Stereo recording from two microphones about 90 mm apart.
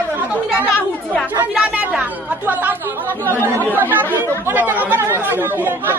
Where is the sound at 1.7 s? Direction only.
10° right (ahead or behind).